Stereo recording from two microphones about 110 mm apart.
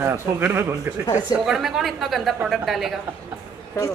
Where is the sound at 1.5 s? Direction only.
5° right (ahead or behind).